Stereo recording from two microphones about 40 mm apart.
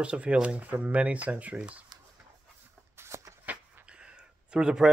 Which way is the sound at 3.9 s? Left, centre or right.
Right.